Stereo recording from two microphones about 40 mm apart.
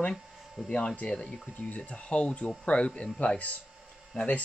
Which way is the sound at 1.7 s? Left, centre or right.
Left.